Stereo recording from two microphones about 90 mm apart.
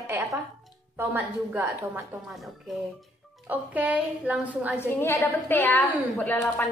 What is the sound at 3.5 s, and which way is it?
A woman's voice, 15° right (ahead or behind).